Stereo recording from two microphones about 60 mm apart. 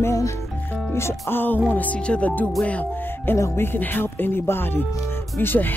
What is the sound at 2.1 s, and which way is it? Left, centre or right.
Speech, left.